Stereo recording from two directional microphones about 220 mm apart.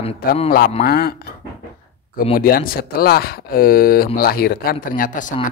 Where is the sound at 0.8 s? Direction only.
45° left (ahead or behind).